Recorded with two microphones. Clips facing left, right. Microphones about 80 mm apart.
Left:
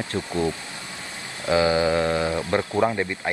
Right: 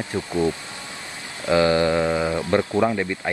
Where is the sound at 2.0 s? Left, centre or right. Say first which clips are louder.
Right 1 dB; centre.